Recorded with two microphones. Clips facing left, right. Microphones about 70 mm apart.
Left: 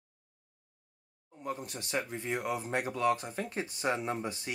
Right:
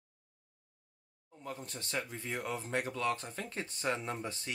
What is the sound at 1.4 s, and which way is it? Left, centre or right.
Speech, centre.